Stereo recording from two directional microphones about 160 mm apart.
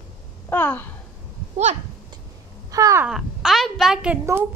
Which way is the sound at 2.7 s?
20° right (ahead or behind).